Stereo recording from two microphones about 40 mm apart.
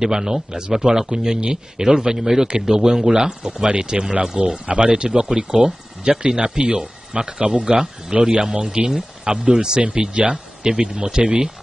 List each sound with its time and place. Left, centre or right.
0.0 s speech: centre
4.6 s speech: right
10.3 s speech: centre